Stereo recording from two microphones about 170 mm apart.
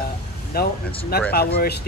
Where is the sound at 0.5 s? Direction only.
65° left (ahead or behind).